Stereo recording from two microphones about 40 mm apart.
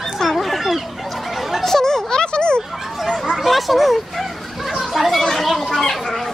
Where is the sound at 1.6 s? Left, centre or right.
Centre.